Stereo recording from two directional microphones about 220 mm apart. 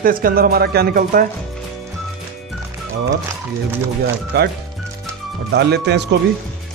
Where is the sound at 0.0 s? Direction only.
40° right (ahead or behind).